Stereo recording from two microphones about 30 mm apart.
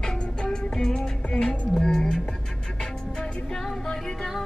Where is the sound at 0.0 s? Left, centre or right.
Left.